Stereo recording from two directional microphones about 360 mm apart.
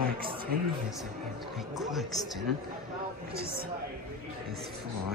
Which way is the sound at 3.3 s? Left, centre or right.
Right.